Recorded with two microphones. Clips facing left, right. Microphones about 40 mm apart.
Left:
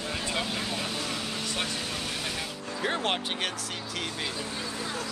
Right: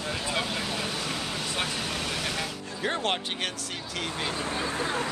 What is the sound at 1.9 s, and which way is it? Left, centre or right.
Vehicle, right.